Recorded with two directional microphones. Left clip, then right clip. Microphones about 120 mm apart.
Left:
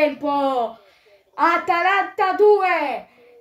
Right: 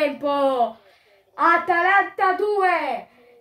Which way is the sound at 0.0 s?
Centre (ahead or behind).